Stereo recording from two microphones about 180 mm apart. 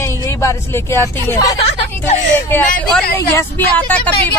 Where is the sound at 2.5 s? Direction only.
5° left (ahead or behind).